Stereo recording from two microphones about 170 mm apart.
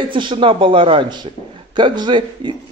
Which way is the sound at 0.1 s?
30° right (ahead or behind).